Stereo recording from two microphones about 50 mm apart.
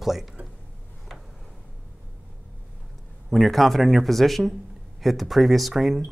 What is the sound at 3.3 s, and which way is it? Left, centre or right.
Speech, centre.